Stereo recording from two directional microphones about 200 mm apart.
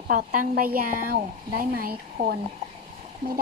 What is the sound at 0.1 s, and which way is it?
A woman's voice, 40° right (ahead or behind).